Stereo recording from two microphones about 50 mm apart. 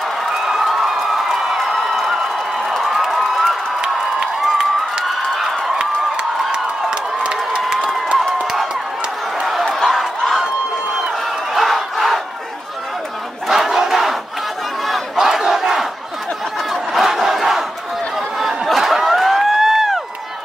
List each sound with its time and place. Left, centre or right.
0.2 s a sound: centre
3.8 s crowd: centre
6.5 s crowd: centre
9.5 s a sound: centre
9.8 s crowd: centre
11.5 s crowd: centre
13.5 s battle cry: centre
14.9 s crowd: centre
16.9 s battle cry: centre
18.4 s crowd: centre